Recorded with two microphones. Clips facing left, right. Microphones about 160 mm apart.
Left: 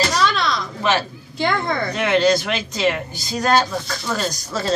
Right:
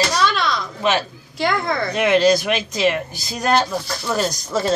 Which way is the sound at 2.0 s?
20° right (ahead or behind).